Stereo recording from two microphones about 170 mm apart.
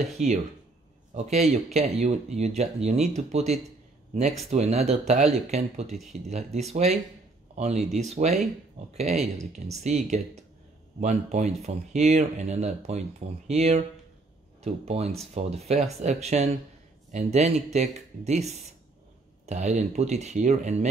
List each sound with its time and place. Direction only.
0.2 s speech: 45° right (ahead or behind)